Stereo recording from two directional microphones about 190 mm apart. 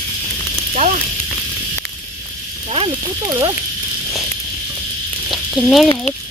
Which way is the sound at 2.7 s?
25° right (ahead or behind).